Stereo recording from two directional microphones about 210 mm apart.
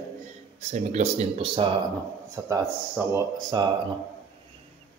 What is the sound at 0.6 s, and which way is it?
Speech, 35° right (ahead or behind).